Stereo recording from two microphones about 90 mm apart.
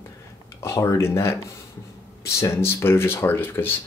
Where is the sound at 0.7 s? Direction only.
35° left (ahead or behind).